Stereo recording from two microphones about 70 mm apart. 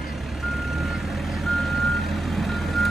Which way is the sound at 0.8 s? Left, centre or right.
Centre.